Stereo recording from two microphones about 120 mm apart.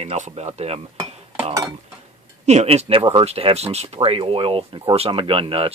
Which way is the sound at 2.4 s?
65° right (ahead or behind).